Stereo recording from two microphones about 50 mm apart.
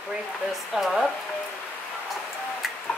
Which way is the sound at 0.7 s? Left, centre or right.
Centre.